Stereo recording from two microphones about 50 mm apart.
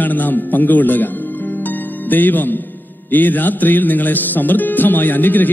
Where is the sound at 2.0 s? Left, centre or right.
Left.